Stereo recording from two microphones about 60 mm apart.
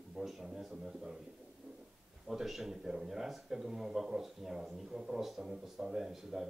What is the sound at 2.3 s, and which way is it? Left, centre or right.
Speech, centre.